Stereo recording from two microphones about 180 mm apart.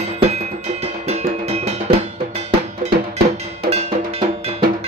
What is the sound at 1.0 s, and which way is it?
Music, 35° right (ahead or behind).